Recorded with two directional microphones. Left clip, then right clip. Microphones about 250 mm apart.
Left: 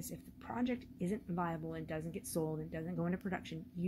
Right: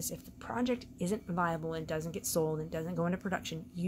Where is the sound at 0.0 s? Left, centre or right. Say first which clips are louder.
Right 7 dB; centre.